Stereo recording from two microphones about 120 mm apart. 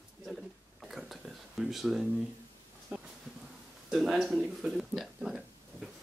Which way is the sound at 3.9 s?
Centre (ahead or behind).